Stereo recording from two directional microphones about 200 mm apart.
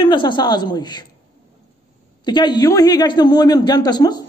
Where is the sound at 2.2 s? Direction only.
20° left (ahead or behind).